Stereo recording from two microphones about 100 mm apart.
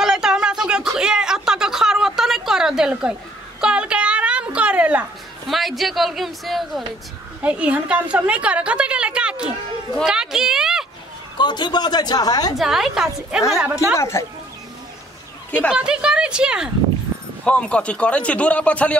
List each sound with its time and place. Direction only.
0.0 s a sound: 5° right (ahead or behind)
5.5 s speech: centre (ahead or behind)
7.4 s a woman's voice: 15° right (ahead or behind)
11.3 s a woman's voice: 50° left (ahead or behind)
12.5 s a woman's voice: 5° right (ahead or behind)
13.9 s speech: 30° left (ahead or behind)
15.7 s a woman's voice: 10° right (ahead or behind)
17.1 s a sound: 20° right (ahead or behind)
17.5 s a man's voice: 10° left (ahead or behind)